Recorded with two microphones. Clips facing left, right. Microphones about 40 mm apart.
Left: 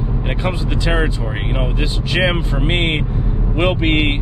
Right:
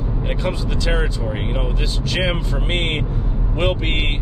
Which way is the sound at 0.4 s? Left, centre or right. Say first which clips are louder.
Left 3 dB; centre.